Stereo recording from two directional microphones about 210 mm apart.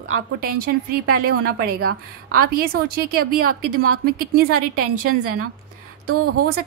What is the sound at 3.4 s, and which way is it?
Speech, 90° right.